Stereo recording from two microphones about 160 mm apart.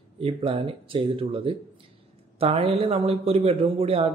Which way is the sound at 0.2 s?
35° right (ahead or behind).